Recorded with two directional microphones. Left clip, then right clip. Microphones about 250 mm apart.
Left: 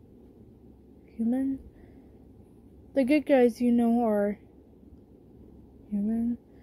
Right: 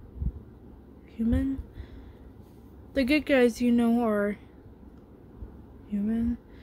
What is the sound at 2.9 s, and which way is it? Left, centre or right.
A woman's voice, centre.